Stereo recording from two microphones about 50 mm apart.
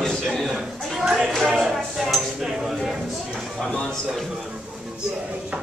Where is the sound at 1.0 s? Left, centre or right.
Centre.